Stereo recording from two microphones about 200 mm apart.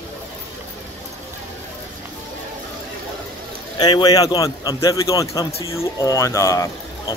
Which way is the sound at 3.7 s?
20° left (ahead or behind).